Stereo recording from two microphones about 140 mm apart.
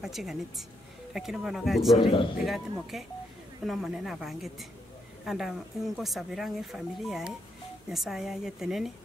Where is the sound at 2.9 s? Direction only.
Centre (ahead or behind).